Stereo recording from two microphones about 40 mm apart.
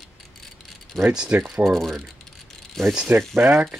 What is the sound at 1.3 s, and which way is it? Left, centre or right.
Speech, right.